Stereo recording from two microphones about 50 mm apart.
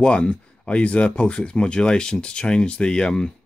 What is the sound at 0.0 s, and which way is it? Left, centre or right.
Speech, centre.